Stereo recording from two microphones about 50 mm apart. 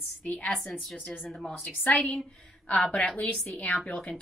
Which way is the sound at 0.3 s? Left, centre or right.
Left.